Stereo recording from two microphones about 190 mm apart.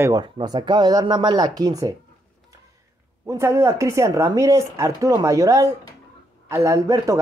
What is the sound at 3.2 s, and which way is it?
A woman's voice, 15° right (ahead or behind).